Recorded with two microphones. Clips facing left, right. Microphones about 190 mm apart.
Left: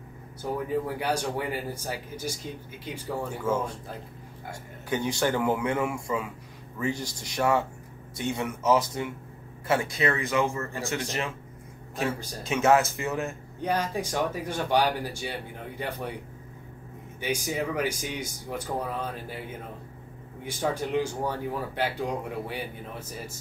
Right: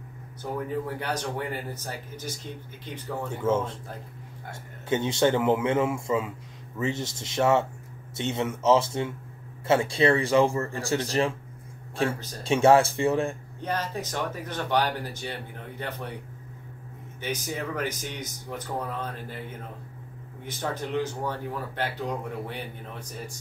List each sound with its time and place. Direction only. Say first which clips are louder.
0.8 s speech: left 2 dB; 10° left (ahead or behind)
3.4 s speech: right 3 dB; 25° right (ahead or behind)
4.8 s a man's voice: right 3 dB; 25° right (ahead or behind)
12.4 s a man's voice: right 3 dB; 30° right (ahead or behind)
13.6 s speech: left 4 dB; 10° left (ahead or behind)
17.2 s speech: left 3 dB; 10° left (ahead or behind)
20.4 s speech: left 3 dB; 10° left (ahead or behind)